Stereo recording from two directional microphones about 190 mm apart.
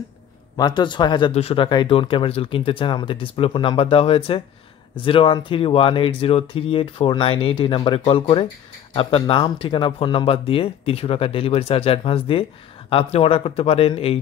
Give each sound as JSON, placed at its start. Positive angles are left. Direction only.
{"t": 0.6, "sound": "speech", "side_deg": 20}